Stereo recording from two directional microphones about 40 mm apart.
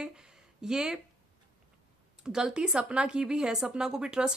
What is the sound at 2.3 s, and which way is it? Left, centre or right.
A woman's voice, centre.